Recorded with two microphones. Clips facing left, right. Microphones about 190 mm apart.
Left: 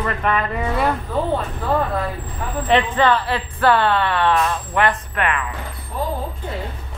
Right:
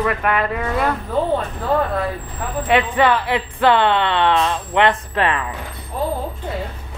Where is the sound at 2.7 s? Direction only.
10° right (ahead or behind); by 5.4 s 30° right (ahead or behind).